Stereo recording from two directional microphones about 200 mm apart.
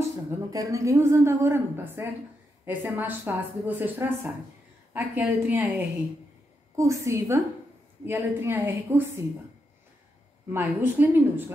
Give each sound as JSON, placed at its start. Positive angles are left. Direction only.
{"t": 0.5, "sound": "a woman's voice", "side_deg": -15}
{"t": 10.5, "sound": "a woman's voice", "side_deg": -10}